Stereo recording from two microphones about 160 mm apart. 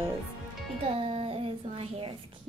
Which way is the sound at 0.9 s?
35° right (ahead or behind).